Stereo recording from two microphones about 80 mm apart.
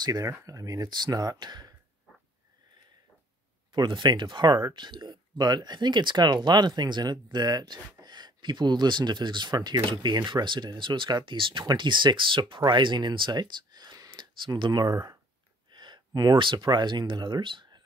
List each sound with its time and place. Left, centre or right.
0.0 s speech: right
3.7 s speech: right
15.7 s a sound: right
16.3 s speech: right